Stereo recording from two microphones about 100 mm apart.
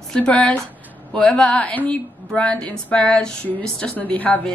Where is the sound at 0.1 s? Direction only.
10° left (ahead or behind).